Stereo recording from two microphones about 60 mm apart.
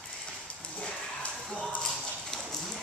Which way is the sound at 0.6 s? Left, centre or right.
Centre.